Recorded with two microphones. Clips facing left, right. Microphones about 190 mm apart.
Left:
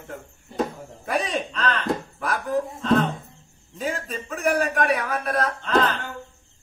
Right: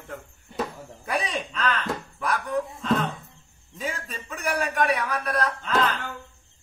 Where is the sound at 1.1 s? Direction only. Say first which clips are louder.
Left 3 dB; centre (ahead or behind).